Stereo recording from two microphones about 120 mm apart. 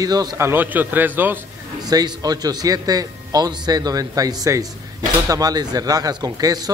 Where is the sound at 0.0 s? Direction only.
35° right (ahead or behind).